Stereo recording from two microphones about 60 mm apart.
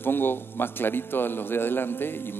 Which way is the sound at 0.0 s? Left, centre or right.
Left.